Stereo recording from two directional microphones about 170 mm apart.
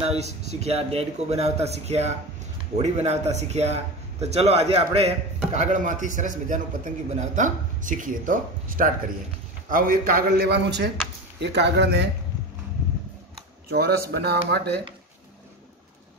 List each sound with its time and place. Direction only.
0.0 s a sound: 35° right (ahead or behind)
0.5 s a man's voice: 40° right (ahead or behind); by 10.9 s 75° right (ahead or behind)
11.3 s speech: 90° right
13.7 s speech: 70° right (ahead or behind)